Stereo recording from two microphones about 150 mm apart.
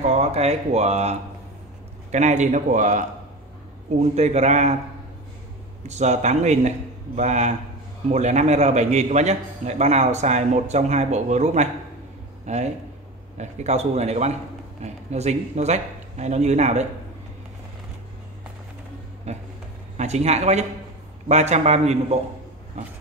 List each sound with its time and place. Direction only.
0.0 s a man's voice: 50° right (ahead or behind)
5.9 s a man's voice: 50° right (ahead or behind)
19.3 s a sound: 45° right (ahead or behind)
20.0 s a man's voice: 45° right (ahead or behind)